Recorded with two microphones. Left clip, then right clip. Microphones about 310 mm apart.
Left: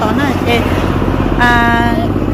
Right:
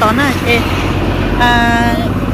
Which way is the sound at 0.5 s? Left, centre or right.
Left.